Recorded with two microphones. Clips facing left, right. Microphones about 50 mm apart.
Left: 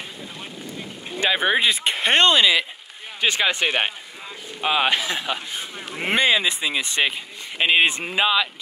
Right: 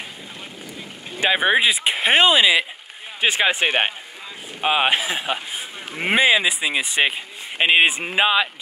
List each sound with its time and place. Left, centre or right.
1.2 s speech: centre